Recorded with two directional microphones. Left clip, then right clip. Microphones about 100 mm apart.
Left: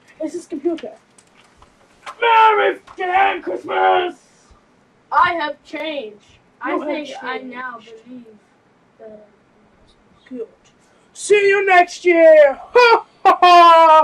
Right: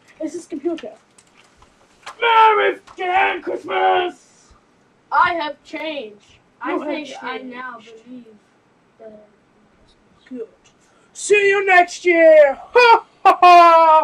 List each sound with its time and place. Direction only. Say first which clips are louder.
0.2 s speech: left 2 dB; 10° left (ahead or behind)
2.0 s a woman's voice: left 1 dB; 5° right (ahead or behind)
10.3 s speech: left 2 dB; 10° left (ahead or behind)
13.4 s wind instrument: left 1 dB; 30° left (ahead or behind)